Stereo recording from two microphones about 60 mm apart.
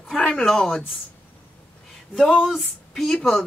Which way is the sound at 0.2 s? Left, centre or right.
Centre.